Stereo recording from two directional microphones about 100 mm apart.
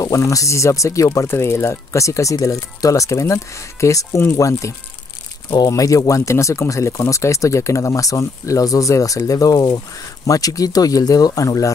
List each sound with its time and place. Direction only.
0.0 s speech: 35° left (ahead or behind)